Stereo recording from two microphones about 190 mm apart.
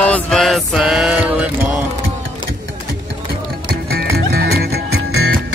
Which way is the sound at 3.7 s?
55° right (ahead or behind).